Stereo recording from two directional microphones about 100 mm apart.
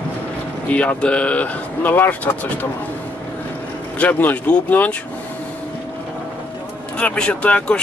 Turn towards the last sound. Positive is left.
turn(degrees=10)  # may be behind; listen again after turning